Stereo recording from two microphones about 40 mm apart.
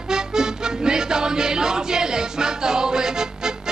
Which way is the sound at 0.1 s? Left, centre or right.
Centre.